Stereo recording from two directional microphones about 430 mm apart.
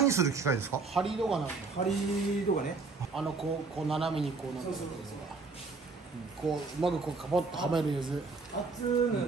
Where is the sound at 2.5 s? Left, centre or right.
Centre.